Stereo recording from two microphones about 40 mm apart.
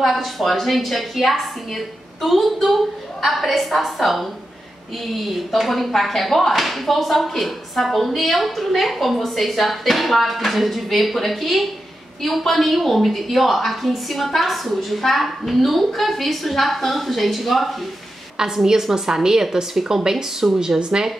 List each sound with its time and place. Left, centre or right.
0.0 s speech: centre
18.4 s a woman's voice: centre
20.0 s a woman's voice: centre